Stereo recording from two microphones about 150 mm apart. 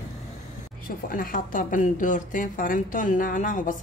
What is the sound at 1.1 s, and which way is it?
A woman's voice, 70° left (ahead or behind).